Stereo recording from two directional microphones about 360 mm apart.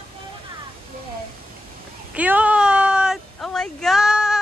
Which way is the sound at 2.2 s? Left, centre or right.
Centre.